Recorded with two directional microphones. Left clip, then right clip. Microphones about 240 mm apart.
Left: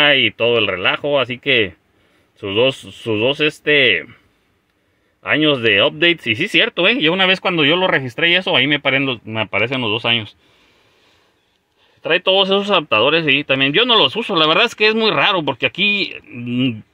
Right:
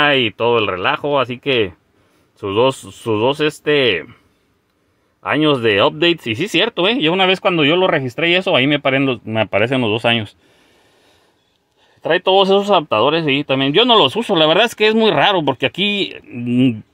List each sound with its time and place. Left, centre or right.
0.0 s speech: centre
5.2 s speech: centre; by 10.2 s right
12.0 s speech: centre